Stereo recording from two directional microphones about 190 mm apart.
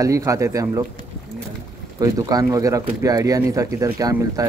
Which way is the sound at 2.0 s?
20° right (ahead or behind).